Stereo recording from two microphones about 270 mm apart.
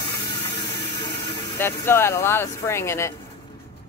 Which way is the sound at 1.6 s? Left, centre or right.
Centre.